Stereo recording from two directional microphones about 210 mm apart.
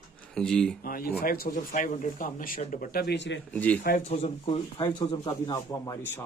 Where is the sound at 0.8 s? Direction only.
45° left (ahead or behind).